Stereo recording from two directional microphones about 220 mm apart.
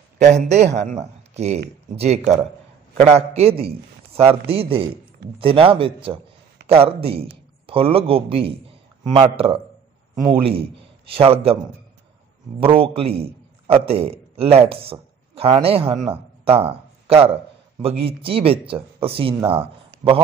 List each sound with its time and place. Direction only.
0.2 s a man's voice: 30° right (ahead or behind)
12.5 s a man's voice: 25° right (ahead or behind)